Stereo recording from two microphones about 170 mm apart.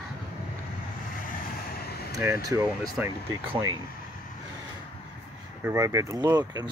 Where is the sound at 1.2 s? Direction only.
60° left (ahead or behind).